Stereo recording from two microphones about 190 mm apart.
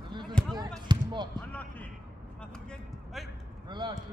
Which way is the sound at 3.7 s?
25° right (ahead or behind).